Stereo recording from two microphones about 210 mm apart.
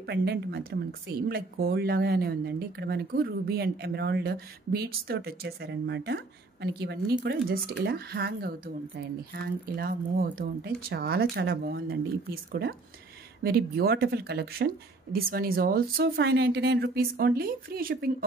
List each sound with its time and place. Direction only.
0.0 s speech: 50° right (ahead or behind)